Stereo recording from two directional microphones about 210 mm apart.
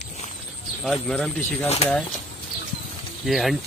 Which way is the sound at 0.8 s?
Centre (ahead or behind).